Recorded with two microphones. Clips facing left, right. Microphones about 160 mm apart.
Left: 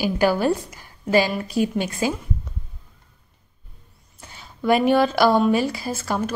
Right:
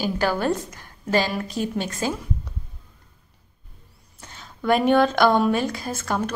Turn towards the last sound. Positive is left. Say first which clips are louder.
# left 1 dB
turn(degrees=5)  # may be behind; listen again after turning